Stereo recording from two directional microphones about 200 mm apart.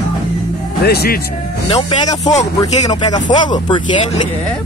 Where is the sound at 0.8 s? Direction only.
50° left (ahead or behind).